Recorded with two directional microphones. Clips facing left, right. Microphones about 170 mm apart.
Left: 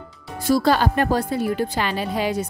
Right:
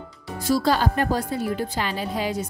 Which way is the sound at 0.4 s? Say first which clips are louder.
Left 3 dB; 55° left (ahead or behind).